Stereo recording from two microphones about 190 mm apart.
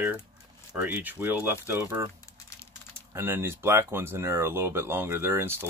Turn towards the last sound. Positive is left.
turn(degrees=-10)  # may be behind; listen again after turning